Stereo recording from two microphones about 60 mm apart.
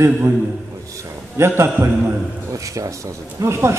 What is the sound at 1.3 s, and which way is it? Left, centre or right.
Speech, right.